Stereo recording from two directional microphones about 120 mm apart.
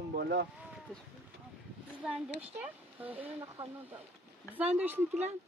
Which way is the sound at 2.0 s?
10° right (ahead or behind).